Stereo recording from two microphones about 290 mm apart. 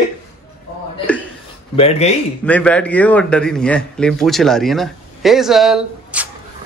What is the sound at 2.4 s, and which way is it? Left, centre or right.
A man's voice, centre.